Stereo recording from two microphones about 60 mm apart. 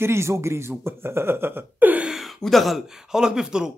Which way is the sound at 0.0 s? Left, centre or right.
Right.